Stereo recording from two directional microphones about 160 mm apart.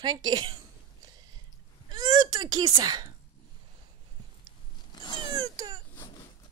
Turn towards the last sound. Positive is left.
turn(degrees=-25)  # may be behind; listen again after turning